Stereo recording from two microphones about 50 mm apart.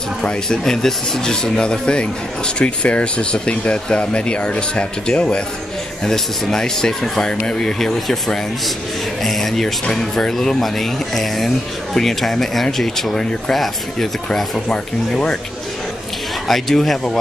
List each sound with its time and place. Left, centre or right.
0.2 s speech: centre
14.7 s speech: centre
16.4 s speech: centre